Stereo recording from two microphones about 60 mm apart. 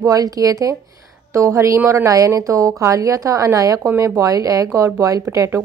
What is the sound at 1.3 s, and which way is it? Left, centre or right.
Speech, right.